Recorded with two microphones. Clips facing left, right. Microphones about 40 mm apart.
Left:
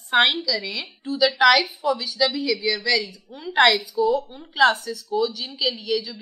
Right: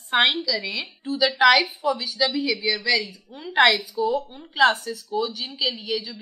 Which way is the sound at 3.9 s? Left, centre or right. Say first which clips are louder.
Left 3 dB; centre.